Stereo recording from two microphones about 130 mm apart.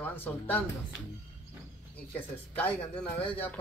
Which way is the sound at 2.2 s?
10° left (ahead or behind).